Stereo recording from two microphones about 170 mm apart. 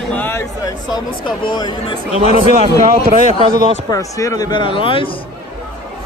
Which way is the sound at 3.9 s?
20° left (ahead or behind).